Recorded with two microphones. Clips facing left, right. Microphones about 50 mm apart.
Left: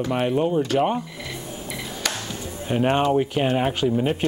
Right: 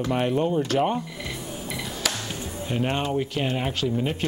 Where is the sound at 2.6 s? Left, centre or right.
Centre.